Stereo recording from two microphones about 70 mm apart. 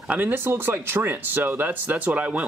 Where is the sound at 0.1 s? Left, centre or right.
Right.